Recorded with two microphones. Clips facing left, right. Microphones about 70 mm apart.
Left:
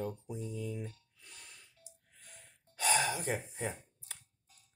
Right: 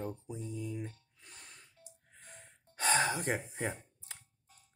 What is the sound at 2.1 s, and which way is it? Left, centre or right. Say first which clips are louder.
Gasp: right 4 dB; right.